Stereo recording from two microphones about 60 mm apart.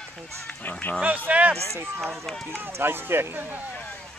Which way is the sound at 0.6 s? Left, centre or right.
Left.